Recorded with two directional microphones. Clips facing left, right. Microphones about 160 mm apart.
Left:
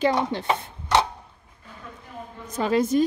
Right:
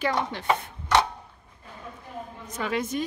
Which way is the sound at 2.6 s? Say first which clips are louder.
Left 8 dB; 35° left (ahead or behind).